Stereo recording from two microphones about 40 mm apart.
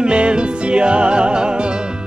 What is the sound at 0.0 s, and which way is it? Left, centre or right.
Music, right.